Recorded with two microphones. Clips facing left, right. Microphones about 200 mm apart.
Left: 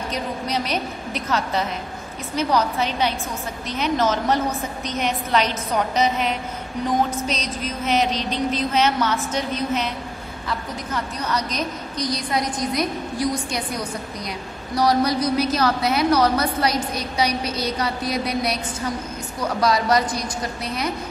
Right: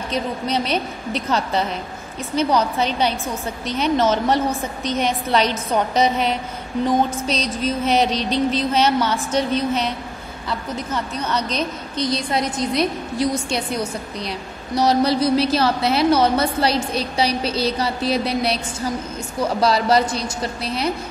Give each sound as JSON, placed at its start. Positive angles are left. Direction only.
{"t": 0.1, "sound": "a woman's voice", "side_deg": -30}
{"t": 11.2, "sound": "a woman's voice", "side_deg": -30}
{"t": 14.8, "sound": "a woman's voice", "side_deg": -25}